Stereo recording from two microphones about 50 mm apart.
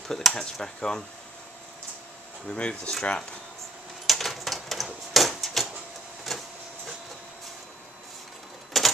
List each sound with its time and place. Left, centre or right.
0.3 s speech: centre
2.4 s speech: left
4.0 s typewriter: centre
6.3 s printer: centre
8.7 s typewriter: centre